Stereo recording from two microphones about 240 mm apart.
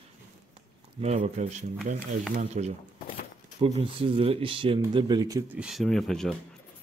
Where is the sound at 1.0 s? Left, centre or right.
Right.